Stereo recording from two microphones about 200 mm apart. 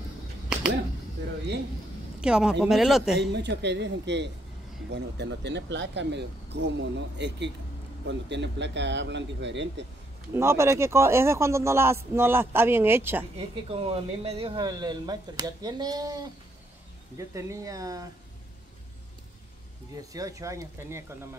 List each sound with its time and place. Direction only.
2.2 s a man's voice: 5° right (ahead or behind)
3.2 s speech: 60° right (ahead or behind)
10.3 s a man's voice: 15° right (ahead or behind)
13.4 s speech: 30° right (ahead or behind)
17.2 s a man's voice: 15° right (ahead or behind)
20.0 s a man's voice: 15° right (ahead or behind)